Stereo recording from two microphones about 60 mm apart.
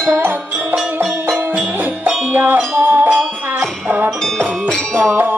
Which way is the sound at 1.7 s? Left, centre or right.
Right.